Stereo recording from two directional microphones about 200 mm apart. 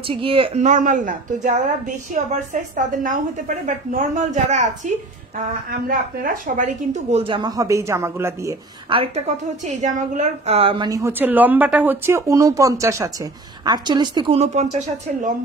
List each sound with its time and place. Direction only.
0.1 s a woman's voice: 25° right (ahead or behind)
5.7 s a woman's voice: 45° right (ahead or behind); by 8.5 s 15° right (ahead or behind)
8.9 s a woman's voice: 30° right (ahead or behind)